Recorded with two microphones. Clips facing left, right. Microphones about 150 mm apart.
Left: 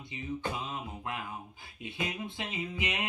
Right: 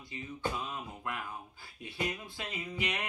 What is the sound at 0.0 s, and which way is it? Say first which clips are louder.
Speech: left 1 dB; 20° left (ahead or behind).